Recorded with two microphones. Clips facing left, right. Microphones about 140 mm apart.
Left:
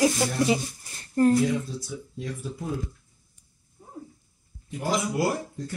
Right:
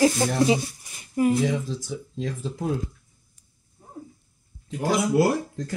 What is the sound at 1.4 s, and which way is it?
Speech, 90° right.